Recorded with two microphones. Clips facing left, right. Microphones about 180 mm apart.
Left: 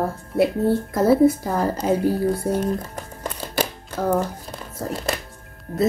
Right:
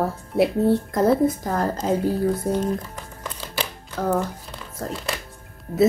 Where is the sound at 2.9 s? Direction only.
45° left (ahead or behind).